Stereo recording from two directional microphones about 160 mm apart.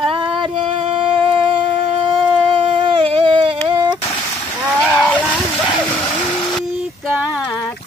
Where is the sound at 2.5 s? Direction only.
35° right (ahead or behind).